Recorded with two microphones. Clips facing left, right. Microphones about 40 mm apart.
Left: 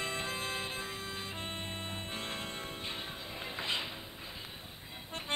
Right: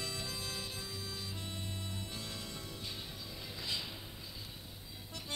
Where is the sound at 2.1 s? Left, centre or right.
Left.